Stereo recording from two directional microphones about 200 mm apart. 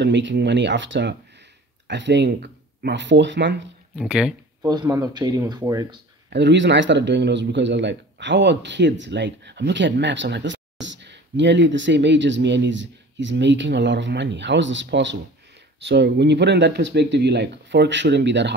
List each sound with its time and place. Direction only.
0.0 s speech: 65° right (ahead or behind)
3.9 s speech: 5° right (ahead or behind)
4.6 s speech: 15° right (ahead or behind)
6.3 s speech: 60° right (ahead or behind)